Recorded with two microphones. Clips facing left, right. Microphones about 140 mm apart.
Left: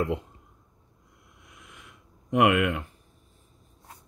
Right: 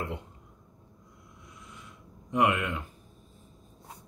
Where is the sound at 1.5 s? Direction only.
90° left; by 2.8 s 75° left (ahead or behind).